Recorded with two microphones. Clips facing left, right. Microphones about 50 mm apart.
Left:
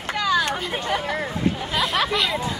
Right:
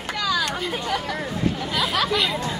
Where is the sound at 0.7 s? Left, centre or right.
Left.